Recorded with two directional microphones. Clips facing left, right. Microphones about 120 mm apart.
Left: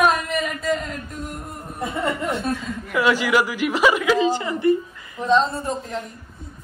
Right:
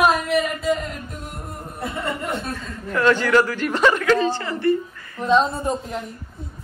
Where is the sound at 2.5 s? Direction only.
5° left (ahead or behind).